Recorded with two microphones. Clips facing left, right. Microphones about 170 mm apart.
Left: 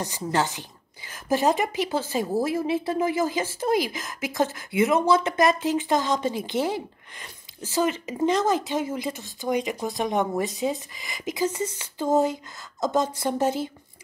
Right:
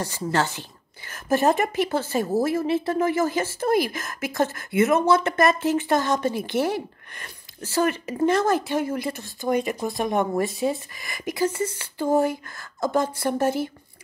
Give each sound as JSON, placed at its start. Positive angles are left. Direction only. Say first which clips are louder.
{"t": 0.0, "sound": "speech", "louder": "right 1 dB", "side_deg": 15}
{"t": 1.6, "sound": "speech", "louder": "right 3 dB", "side_deg": -55}
{"t": 1.9, "sound": "speech", "louder": "right 2 dB", "side_deg": 15}
{"t": 3.7, "sound": "speech", "louder": "right 2 dB", "side_deg": -55}
{"t": 4.2, "sound": "speech", "louder": "right 1 dB", "side_deg": 15}
{"t": 7.9, "sound": "speech", "louder": "right 2 dB", "side_deg": 15}